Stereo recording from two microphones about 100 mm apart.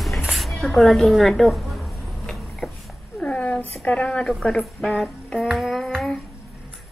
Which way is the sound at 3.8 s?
15° left (ahead or behind).